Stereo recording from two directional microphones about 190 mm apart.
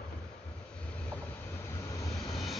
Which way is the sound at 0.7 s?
5° left (ahead or behind).